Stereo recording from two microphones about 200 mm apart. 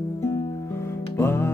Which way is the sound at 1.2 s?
10° left (ahead or behind).